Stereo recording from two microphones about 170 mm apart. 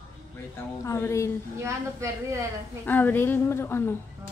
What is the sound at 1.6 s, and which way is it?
Speech, 15° right (ahead or behind).